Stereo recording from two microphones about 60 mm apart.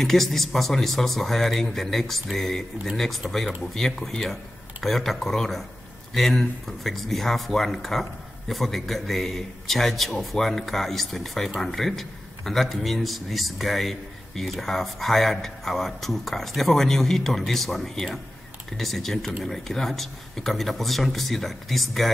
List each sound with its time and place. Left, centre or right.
0.0 s a man's voice: centre